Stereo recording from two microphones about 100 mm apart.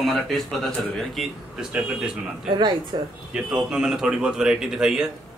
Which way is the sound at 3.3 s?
5° right (ahead or behind).